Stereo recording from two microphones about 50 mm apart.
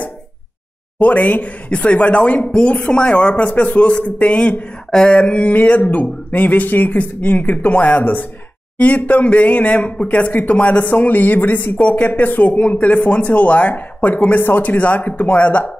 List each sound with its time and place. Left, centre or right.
0.9 s speech: left
4.9 s speech: centre